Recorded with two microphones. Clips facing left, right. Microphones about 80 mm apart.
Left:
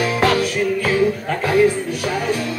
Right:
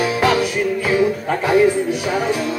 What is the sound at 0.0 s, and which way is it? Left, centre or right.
Music, centre.